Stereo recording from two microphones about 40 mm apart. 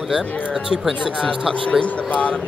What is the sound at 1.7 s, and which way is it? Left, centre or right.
Speech, left.